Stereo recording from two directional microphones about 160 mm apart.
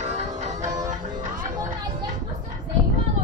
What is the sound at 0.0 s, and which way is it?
Music, 45° right (ahead or behind).